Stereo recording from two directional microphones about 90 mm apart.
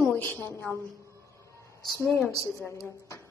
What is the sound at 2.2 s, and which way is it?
A woman's voice, 35° left (ahead or behind).